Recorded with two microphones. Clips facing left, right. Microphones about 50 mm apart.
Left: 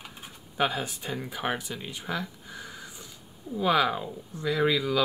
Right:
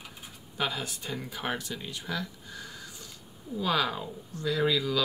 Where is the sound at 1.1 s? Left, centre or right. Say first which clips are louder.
Left 3 dB; centre.